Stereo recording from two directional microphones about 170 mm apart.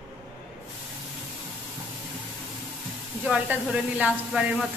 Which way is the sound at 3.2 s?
5° right (ahead or behind).